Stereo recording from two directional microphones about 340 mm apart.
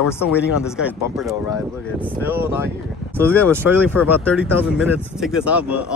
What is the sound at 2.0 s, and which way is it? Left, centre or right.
Speech, centre.